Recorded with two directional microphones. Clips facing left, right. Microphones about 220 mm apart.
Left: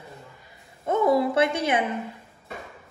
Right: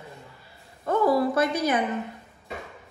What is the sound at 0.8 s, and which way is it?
Speech, 25° left (ahead or behind).